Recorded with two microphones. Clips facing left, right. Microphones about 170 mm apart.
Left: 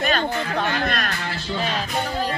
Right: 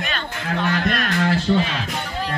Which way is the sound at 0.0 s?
40° left (ahead or behind).